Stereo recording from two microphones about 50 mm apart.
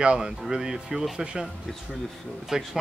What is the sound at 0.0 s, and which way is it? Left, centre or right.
Speech, right.